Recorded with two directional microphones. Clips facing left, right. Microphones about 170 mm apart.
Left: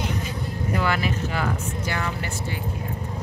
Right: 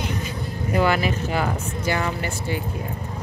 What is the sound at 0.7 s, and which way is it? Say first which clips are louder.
Speech: right 5 dB; 15° right (ahead or behind).